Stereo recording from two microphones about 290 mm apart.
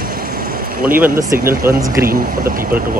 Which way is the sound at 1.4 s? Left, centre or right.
Right.